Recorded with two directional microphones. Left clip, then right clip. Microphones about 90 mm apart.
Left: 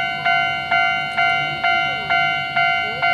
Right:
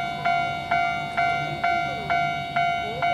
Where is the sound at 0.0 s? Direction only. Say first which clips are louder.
Left 6 dB; 30° left (ahead or behind).